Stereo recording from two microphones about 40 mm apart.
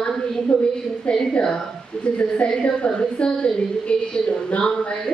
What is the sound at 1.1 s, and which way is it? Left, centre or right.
A woman's voice, left.